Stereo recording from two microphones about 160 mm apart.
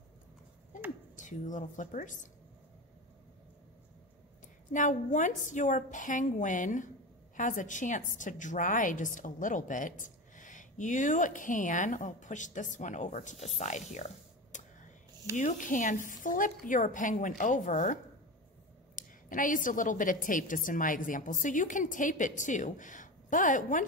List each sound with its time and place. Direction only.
1.1 s a woman's voice: 50° left (ahead or behind)
4.7 s a woman's voice: 50° left (ahead or behind)
13.6 s whispering: 45° left (ahead or behind)
15.3 s a woman's voice: 50° left (ahead or behind)
18.9 s a woman's voice: 55° left (ahead or behind)